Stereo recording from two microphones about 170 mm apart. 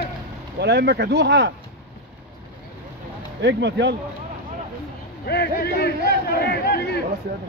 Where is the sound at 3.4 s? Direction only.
90° right.